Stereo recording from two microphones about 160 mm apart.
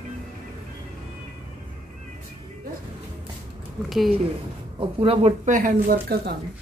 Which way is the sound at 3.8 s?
Centre (ahead or behind).